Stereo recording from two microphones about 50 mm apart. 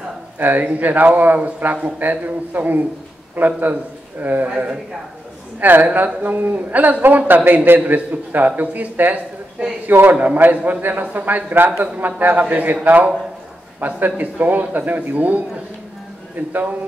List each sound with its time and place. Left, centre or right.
0.4 s a man's voice: right
4.5 s a man's voice: right